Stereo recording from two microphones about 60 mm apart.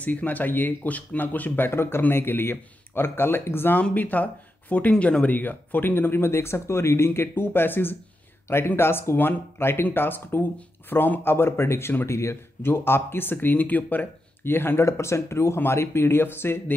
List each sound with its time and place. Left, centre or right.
0.0 s speech: left
1.7 s speech: left
3.7 s speech: left
12.1 s speech: left